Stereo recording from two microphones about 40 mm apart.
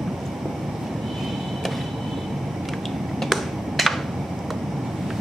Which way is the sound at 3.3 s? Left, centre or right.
Centre.